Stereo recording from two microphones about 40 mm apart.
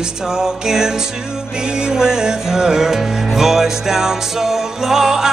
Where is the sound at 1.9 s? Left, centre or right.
Centre.